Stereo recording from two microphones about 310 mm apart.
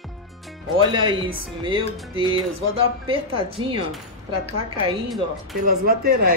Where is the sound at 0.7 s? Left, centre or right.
Centre.